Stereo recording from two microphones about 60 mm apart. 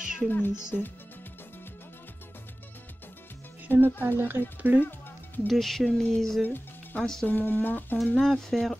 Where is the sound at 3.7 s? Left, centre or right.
Right.